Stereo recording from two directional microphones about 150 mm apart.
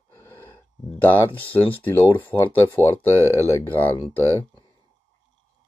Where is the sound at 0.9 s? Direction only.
10° left (ahead or behind).